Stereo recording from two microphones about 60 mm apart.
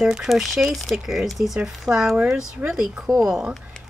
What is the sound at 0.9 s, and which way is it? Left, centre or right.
Speech, centre.